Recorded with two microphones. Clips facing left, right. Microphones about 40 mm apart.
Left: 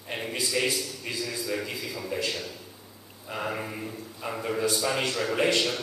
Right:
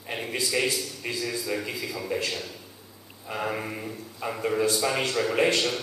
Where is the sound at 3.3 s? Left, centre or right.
Centre.